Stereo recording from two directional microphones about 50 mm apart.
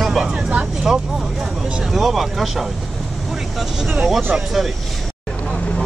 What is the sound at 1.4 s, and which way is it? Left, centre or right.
Vehicle, centre.